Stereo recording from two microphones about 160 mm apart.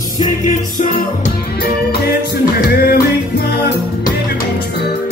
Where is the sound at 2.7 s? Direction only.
80° left.